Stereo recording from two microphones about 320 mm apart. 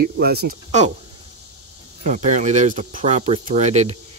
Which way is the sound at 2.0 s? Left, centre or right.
Right.